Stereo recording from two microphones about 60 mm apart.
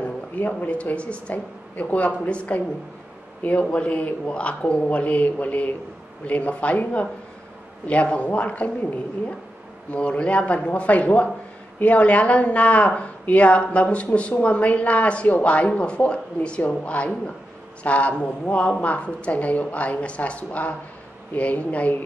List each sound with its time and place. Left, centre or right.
0.4 s a woman's voice: left